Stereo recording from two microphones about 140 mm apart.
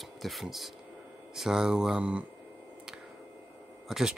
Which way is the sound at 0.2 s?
Centre (ahead or behind).